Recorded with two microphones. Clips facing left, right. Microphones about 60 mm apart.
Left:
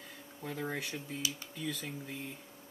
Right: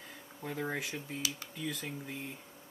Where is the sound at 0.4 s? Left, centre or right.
Centre.